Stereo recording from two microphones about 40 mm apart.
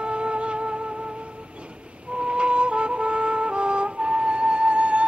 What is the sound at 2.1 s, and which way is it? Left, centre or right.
Music, right.